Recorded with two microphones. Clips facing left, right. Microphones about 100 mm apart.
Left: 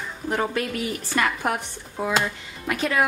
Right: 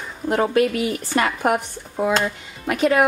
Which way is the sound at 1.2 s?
25° right (ahead or behind).